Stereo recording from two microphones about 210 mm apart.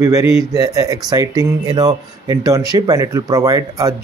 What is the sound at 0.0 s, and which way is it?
Speech, 15° right (ahead or behind).